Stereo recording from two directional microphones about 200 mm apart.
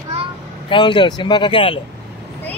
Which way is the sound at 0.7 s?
25° left (ahead or behind).